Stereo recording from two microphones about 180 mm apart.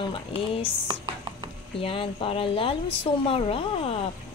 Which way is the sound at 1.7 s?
30° left (ahead or behind).